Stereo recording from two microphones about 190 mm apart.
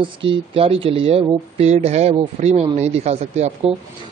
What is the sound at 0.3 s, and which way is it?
A man's voice, 30° right (ahead or behind).